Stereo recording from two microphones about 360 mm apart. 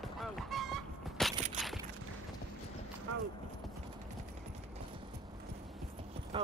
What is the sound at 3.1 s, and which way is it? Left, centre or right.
Clip-clop, right.